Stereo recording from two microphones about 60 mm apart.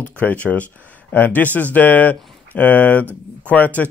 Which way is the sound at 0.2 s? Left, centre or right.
Left.